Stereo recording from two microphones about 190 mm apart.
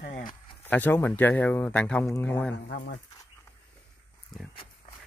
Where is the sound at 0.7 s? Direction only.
10° left (ahead or behind).